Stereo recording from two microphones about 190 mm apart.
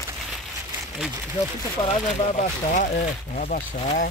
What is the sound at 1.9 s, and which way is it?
Speech, 40° left (ahead or behind).